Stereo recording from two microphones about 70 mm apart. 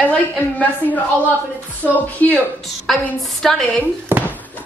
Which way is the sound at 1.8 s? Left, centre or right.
Left.